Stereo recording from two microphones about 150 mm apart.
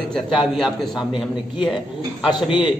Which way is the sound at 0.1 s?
Centre (ahead or behind).